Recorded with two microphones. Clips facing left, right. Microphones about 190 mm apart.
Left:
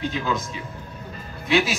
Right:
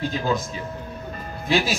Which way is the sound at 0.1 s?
35° right (ahead or behind).